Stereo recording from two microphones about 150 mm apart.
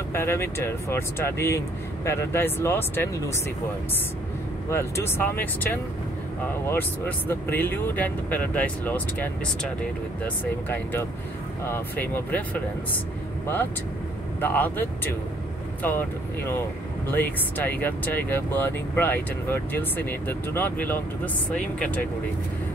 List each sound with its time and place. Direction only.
0.1 s speech: 15° left (ahead or behind)
4.6 s speech: 15° left (ahead or behind)
14.4 s speech: 15° left (ahead or behind)